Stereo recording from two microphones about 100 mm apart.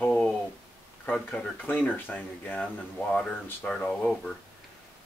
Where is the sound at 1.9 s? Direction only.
15° left (ahead or behind).